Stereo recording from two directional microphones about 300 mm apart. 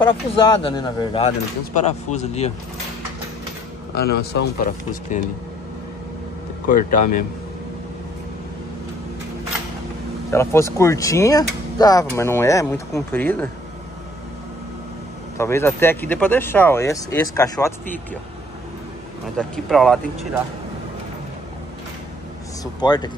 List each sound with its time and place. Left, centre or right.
0.0 s speech: centre
4.2 s speech: left
6.7 s a man's voice: left
10.3 s speech: centre
15.3 s speech: centre
19.3 s speech: centre
22.6 s speech: centre